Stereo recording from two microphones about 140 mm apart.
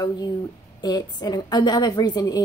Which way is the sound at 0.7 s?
30° left (ahead or behind).